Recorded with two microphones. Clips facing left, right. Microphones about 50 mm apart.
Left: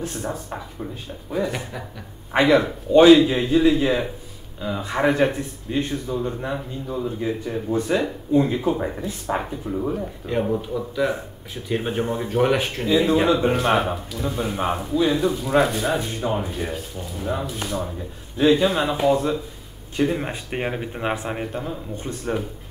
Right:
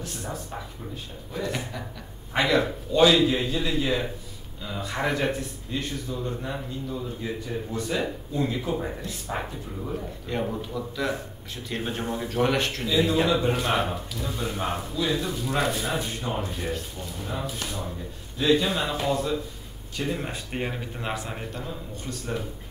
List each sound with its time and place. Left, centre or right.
0.0 s speech: left
1.3 s speech: centre
2.3 s speech: left
10.2 s speech: centre
12.0 s speech: left
12.3 s speech: centre
12.8 s speech: left
13.5 s speech: centre
14.1 s speech: centre
15.3 s speech: centre
18.4 s speech: centre